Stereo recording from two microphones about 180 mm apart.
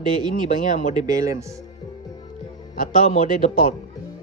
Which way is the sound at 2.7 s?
45° left (ahead or behind).